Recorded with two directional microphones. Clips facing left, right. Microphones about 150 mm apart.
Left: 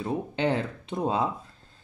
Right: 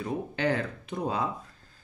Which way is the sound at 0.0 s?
25° left (ahead or behind).